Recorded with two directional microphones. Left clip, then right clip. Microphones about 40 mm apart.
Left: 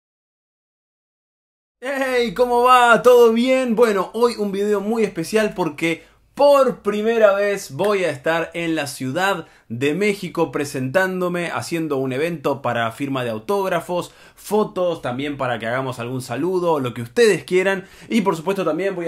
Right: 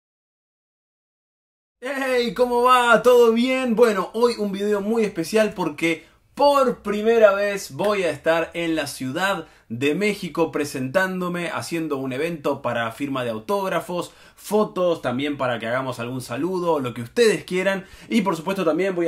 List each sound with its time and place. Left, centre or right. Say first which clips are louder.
1.8 s speech: left 2 dB; left